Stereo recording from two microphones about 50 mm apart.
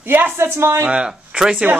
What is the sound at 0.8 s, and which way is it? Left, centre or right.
Speech, right.